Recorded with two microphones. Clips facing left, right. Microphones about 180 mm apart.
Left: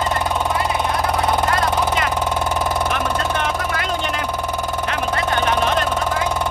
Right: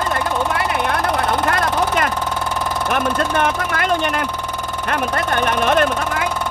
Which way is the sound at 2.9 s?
55° right (ahead or behind).